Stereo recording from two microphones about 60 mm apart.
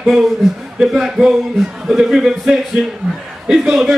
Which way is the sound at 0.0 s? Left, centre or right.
Centre.